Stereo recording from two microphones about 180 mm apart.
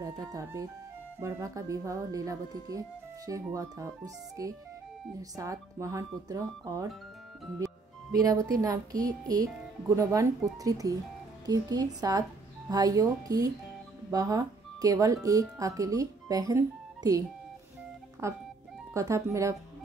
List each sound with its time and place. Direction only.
0.0 s speech: 15° right (ahead or behind)
18.2 s speech: 15° right (ahead or behind)